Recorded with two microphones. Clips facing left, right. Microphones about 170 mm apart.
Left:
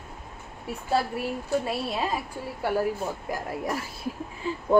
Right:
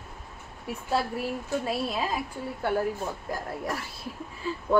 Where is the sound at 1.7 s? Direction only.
Centre (ahead or behind).